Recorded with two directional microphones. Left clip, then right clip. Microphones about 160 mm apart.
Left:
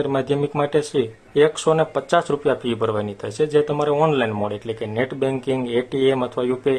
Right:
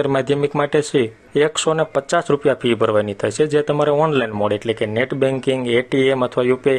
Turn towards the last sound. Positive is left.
turn(degrees=-25)  # may be behind; listen again after turning